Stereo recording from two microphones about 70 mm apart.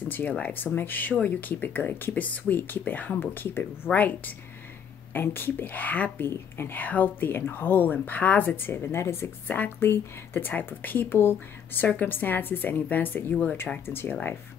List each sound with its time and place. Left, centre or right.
0.1 s speech: left
6.2 s a woman's voice: left
6.8 s speech: left
13.8 s a woman's voice: left